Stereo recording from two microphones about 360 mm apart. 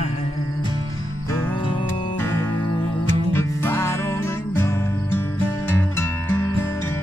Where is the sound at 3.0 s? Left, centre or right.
Centre.